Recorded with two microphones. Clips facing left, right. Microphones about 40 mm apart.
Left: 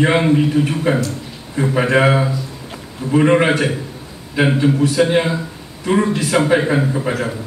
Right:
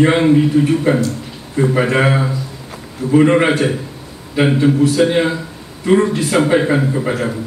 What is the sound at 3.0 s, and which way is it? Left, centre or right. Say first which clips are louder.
Speech: right 4 dB; left.